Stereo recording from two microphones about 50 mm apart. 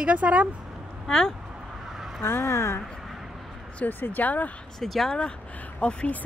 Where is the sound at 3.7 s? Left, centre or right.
Left.